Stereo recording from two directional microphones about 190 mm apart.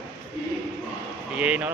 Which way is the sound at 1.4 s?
5° right (ahead or behind).